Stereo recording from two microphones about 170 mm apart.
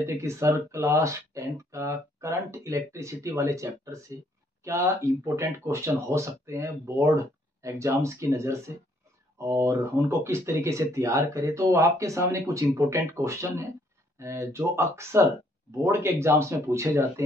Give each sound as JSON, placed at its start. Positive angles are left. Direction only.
{"t": 0.0, "sound": "speech", "side_deg": -15}